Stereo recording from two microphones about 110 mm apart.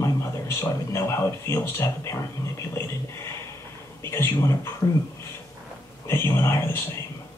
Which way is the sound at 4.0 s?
25° left (ahead or behind).